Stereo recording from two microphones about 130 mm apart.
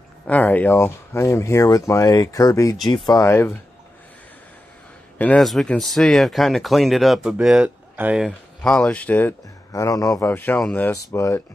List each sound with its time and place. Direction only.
0.3 s speech: 15° left (ahead or behind)
5.2 s speech: 5° left (ahead or behind); by 8.3 s 10° right (ahead or behind)
8.3 s speech: 10° left (ahead or behind)
9.7 s speech: 25° left (ahead or behind)
10.3 s speech: 15° left (ahead or behind)
10.9 s speech: 25° left (ahead or behind)